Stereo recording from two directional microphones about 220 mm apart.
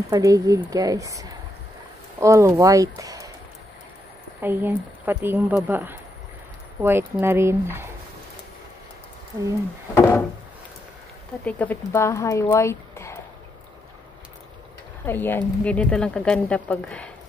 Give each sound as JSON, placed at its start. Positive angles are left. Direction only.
{"t": 0.1, "sound": "speech", "side_deg": -15}
{"t": 4.4, "sound": "speech", "side_deg": -10}
{"t": 9.9, "sound": "music", "side_deg": 10}
{"t": 11.4, "sound": "speech", "side_deg": 5}
{"t": 15.0, "sound": "a woman's voice", "side_deg": 10}